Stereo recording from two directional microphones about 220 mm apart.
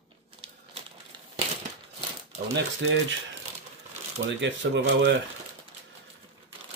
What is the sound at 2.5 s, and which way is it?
Speech, 55° right (ahead or behind).